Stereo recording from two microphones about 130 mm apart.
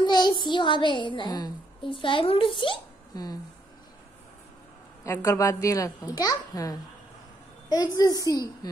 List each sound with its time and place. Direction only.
0.0 s a child's voice: 35° left (ahead or behind)
5.0 s a child's voice: 25° left (ahead or behind)